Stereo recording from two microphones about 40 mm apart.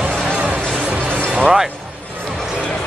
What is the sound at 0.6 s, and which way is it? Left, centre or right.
Music, centre.